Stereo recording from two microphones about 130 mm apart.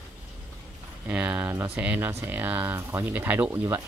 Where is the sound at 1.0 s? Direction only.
10° right (ahead or behind).